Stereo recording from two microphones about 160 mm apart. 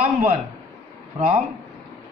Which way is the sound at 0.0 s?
55° right (ahead or behind).